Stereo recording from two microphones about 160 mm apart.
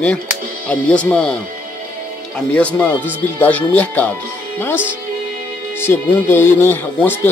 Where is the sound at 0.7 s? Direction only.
10° left (ahead or behind).